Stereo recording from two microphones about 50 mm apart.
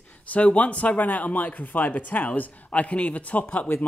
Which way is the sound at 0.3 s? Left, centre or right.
Left.